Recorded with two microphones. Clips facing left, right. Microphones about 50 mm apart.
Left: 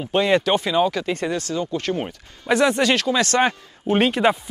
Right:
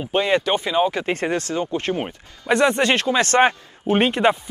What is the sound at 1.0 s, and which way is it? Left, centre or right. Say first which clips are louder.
Speech: right 2 dB; right.